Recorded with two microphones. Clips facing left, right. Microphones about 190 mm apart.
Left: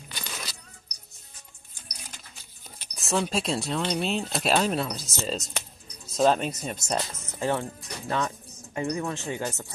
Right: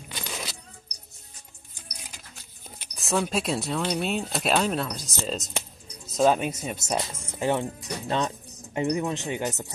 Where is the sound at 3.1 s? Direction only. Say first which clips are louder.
Right 1 dB; centre (ahead or behind).